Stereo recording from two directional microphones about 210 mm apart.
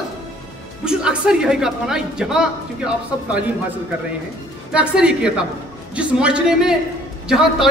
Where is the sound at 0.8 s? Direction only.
5° right (ahead or behind).